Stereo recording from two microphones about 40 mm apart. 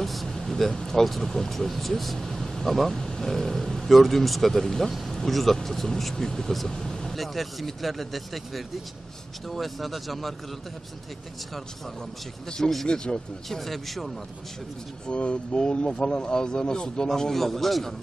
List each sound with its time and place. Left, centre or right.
0.0 s speech: centre
6.7 s vehicle: centre
7.2 s speech: centre
12.4 s speech: centre
13.5 s speech: centre
15.0 s speech: left; by 17.9 s centre